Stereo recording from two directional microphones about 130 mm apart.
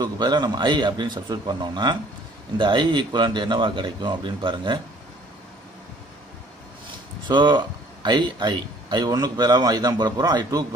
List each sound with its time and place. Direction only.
0.0 s speech: 35° right (ahead or behind)
7.2 s speech: 35° right (ahead or behind)